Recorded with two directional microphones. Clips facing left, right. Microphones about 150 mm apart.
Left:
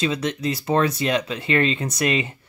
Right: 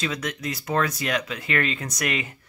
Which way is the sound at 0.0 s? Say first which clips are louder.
Left 6 dB; 25° left (ahead or behind).